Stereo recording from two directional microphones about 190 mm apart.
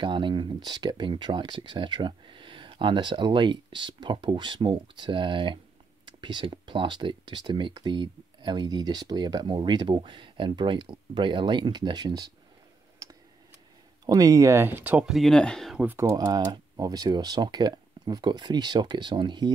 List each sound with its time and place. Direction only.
0.0 s speech: 25° right (ahead or behind)
14.0 s speech: 20° right (ahead or behind)